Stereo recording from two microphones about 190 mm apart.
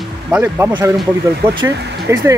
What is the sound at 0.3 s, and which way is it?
Speech, 10° right (ahead or behind).